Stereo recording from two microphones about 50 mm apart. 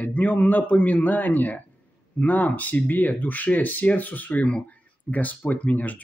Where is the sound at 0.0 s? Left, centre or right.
Left.